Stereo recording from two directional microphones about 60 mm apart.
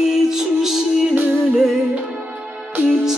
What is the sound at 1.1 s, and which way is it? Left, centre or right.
Music, right.